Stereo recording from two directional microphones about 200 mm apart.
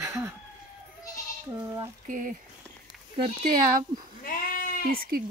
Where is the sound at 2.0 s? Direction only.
40° right (ahead or behind).